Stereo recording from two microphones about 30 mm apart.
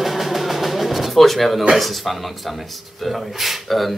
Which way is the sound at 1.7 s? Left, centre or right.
Centre.